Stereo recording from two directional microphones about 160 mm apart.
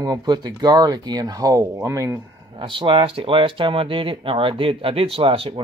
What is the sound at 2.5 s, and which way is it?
Speech, 30° right (ahead or behind).